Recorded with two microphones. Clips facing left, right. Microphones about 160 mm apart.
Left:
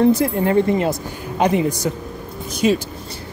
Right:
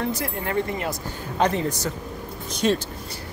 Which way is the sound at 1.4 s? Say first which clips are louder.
Left 5 dB; 10° left (ahead or behind).